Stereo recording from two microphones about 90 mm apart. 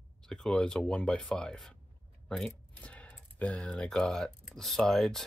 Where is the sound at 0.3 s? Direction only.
5° left (ahead or behind).